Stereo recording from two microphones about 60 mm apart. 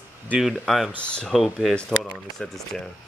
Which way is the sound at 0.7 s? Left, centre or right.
Centre.